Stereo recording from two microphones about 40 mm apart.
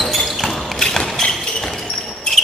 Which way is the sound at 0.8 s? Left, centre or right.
Centre.